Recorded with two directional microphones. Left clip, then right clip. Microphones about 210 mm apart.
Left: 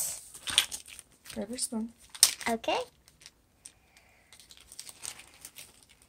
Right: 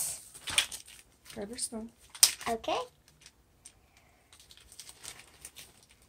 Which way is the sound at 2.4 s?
30° left (ahead or behind).